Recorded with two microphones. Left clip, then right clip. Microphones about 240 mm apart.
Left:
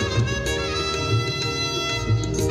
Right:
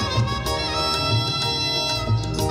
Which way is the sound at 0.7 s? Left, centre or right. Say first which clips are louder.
Right 2 dB; right.